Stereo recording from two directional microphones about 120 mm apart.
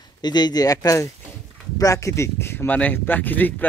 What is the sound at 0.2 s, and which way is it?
A man's voice, 35° left (ahead or behind).